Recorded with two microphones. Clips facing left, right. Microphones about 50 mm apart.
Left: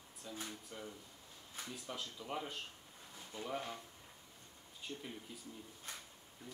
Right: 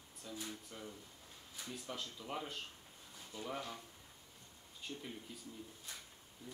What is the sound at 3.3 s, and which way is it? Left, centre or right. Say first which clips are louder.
Speech: left 1 dB; left.